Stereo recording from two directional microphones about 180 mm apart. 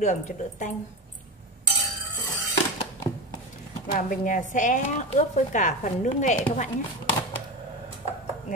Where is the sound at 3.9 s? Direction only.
50° left (ahead or behind).